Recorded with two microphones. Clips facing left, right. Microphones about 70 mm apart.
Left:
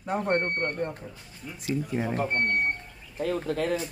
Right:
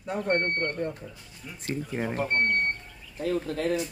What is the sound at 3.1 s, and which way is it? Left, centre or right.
Speech, left.